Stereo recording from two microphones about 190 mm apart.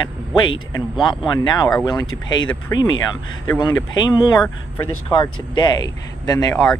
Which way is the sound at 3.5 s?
20° left (ahead or behind).